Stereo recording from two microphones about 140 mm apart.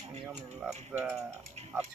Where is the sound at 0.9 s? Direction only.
10° right (ahead or behind).